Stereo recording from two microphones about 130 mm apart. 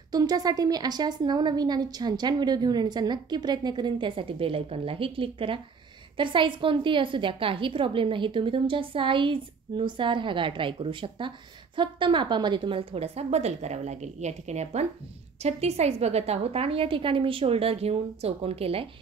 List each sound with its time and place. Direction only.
0.1 s a woman's voice: 30° right (ahead or behind); by 18.9 s 50° right (ahead or behind)